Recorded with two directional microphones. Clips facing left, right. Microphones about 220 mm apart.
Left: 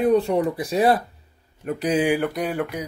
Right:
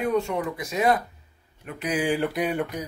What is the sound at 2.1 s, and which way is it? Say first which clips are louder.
Speech: left 1 dB; centre (ahead or behind).